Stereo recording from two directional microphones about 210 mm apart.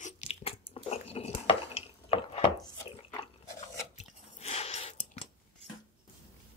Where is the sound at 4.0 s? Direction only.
30° left (ahead or behind).